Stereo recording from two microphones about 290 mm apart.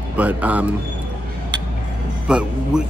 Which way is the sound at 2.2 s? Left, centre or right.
Centre.